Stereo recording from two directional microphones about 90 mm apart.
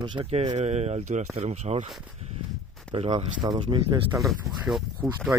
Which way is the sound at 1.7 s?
90° right.